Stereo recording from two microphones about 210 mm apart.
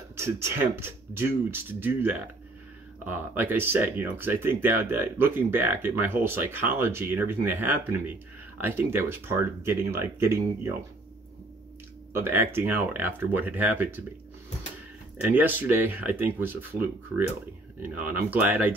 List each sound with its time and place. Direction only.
0.1 s speech: 10° right (ahead or behind)
12.1 s speech: 10° right (ahead or behind)
15.3 s speech: 10° right (ahead or behind)
17.8 s speech: 10° right (ahead or behind)